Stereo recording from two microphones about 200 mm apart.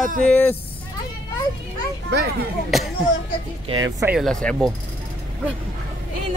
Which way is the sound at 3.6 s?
20° right (ahead or behind).